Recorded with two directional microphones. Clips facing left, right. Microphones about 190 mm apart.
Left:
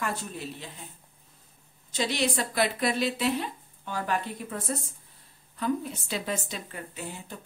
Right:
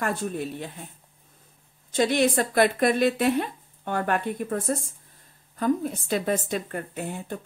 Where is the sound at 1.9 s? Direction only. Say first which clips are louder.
Right 7 dB; 50° right (ahead or behind).